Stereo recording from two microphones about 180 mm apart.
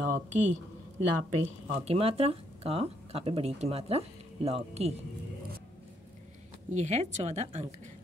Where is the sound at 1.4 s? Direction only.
35° right (ahead or behind).